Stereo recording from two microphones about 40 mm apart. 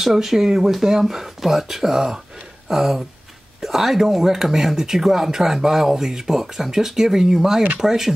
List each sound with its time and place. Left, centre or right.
0.0 s speech: centre